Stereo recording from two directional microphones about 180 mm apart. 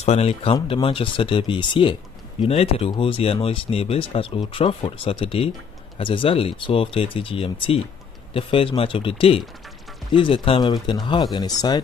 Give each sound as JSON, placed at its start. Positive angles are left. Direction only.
{"t": 0.0, "sound": "speech", "side_deg": 35}